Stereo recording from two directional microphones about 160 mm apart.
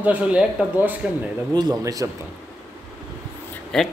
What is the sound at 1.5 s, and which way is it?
Speech, 25° right (ahead or behind).